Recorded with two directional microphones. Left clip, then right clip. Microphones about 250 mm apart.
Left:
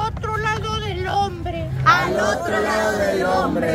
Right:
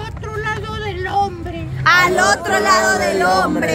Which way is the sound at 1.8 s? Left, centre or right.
Right.